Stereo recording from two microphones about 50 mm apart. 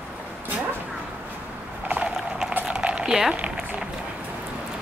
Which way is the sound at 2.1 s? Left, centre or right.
Centre.